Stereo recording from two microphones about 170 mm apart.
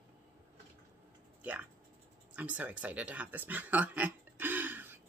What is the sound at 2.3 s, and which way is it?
Speech, 10° right (ahead or behind).